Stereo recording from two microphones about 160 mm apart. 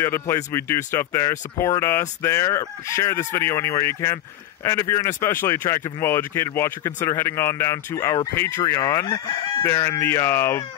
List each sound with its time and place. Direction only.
0.0 s speech: 15° left (ahead or behind)
9.7 s speech: 20° left (ahead or behind)